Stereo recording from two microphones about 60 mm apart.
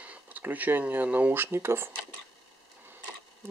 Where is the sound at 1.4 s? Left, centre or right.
Right.